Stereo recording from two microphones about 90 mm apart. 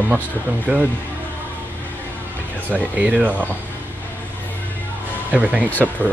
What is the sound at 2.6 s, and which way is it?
Speech, 15° right (ahead or behind).